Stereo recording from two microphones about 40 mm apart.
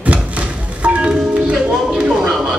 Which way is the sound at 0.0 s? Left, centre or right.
Right.